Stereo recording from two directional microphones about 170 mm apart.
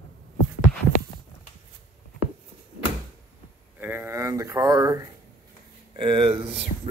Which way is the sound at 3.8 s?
10° right (ahead or behind).